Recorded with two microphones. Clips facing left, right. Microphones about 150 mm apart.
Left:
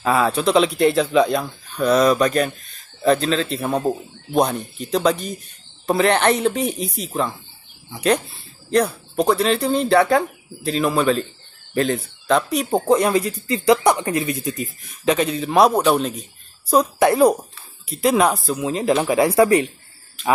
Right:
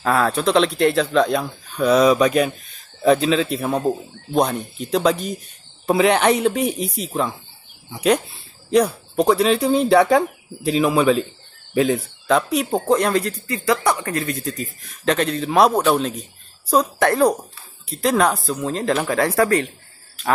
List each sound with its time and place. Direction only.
0.0 s speech: centre (ahead or behind)
8.6 s speech: 5° right (ahead or behind)
13.5 s speech: 20° left (ahead or behind)
15.0 s speech: 5° left (ahead or behind)